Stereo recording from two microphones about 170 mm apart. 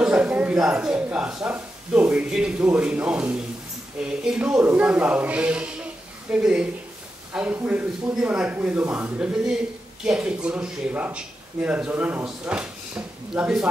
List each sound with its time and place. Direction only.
0.0 s speech: 5° right (ahead or behind)